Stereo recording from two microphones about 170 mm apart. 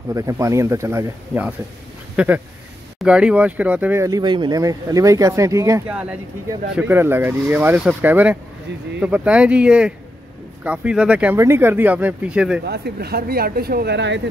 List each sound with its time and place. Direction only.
0.1 s speech: 20° right (ahead or behind)
5.9 s speech: 5° right (ahead or behind)
12.6 s speech: 70° right (ahead or behind); by 14.2 s 90° right